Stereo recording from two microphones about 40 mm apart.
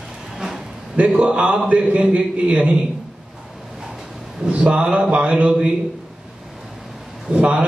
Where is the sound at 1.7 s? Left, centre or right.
Right.